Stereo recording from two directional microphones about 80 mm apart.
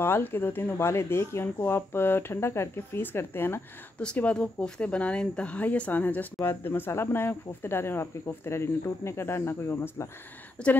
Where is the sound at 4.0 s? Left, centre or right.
Centre; by 10.1 s left.